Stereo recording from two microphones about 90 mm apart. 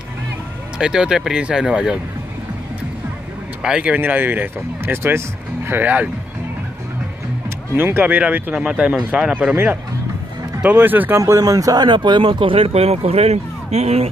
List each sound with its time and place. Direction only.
0.7 s speech: 10° right (ahead or behind)
3.6 s speech: 10° right (ahead or behind)
7.4 s speech: 25° right (ahead or behind); by 9.6 s 10° right (ahead or behind)
10.6 s speech: 20° right (ahead or behind)
11.1 s speech: 35° right (ahead or behind); by 13.3 s 90° right